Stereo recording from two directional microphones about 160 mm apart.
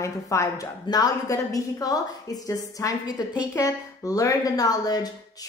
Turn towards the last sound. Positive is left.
turn(degrees=25)  # may be behind; listen again after turning